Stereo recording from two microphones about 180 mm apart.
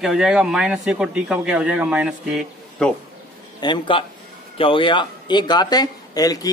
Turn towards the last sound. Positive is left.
turn(degrees=20)  # may be behind; listen again after turning